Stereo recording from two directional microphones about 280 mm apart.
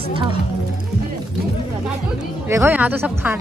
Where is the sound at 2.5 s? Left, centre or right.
Centre.